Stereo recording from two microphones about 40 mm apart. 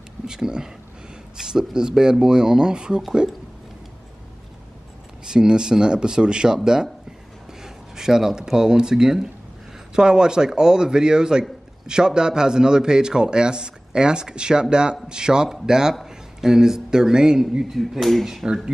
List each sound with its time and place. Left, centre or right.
0.3 s a man's voice: centre
5.2 s a man's voice: centre
17.7 s speech: centre
18.2 s speech: centre